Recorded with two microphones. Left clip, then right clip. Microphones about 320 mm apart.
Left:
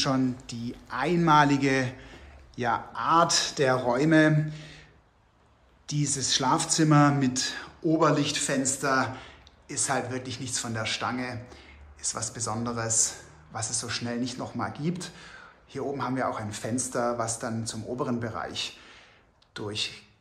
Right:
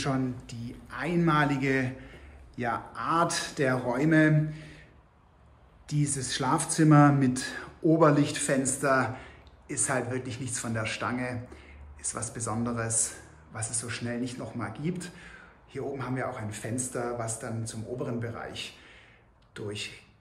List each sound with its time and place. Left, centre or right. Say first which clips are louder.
0.0 s speech: left 4 dB; centre
5.9 s speech: left 4 dB; centre